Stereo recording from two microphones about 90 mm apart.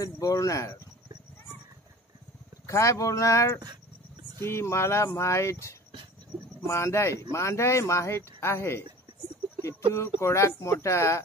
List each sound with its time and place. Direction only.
0.0 s speech: 40° left (ahead or behind)
2.6 s speech: 35° left (ahead or behind)
9.9 s speech: 30° left (ahead or behind)